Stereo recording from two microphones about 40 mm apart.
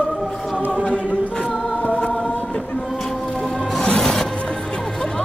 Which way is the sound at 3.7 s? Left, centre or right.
Centre.